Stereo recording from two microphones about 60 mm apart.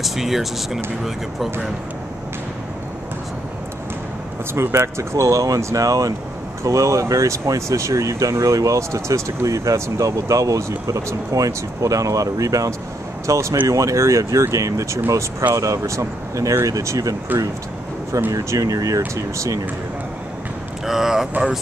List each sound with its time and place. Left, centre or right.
0.0 s speech: centre
4.7 s speech: right
6.6 s speech: right
17.3 s speech: right
18.3 s speech: right
20.8 s speech: centre